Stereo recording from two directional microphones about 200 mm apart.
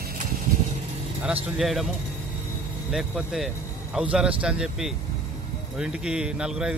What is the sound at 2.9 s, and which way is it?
A man's voice, 5° right (ahead or behind).